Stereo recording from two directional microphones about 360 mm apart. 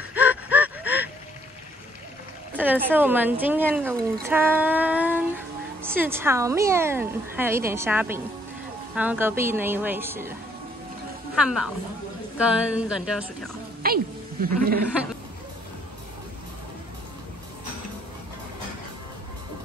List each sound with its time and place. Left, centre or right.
0.1 s gasp: centre
2.5 s a woman's voice: centre
11.4 s a woman's voice: centre
13.8 s speech: right